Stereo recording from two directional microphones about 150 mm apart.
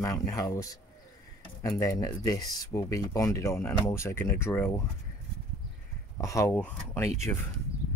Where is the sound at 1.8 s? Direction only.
25° left (ahead or behind).